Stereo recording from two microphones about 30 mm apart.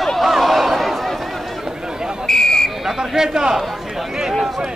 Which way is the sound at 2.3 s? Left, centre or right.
Centre.